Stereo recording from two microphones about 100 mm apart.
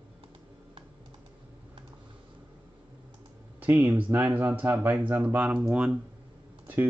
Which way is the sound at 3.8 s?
15° right (ahead or behind).